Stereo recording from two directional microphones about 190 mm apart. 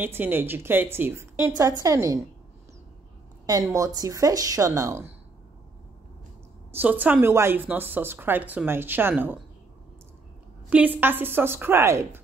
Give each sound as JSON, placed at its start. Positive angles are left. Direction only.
{"t": 0.0, "sound": "a woman's voice", "side_deg": -10}
{"t": 3.4, "sound": "a woman's voice", "side_deg": -20}
{"t": 6.7, "sound": "a woman's voice", "side_deg": -10}
{"t": 10.7, "sound": "a woman's voice", "side_deg": -10}